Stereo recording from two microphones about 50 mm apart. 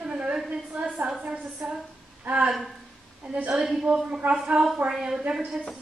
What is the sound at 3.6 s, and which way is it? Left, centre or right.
A woman's voice, centre.